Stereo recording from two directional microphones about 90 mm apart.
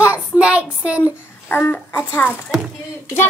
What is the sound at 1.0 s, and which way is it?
A child's voice, 25° left (ahead or behind).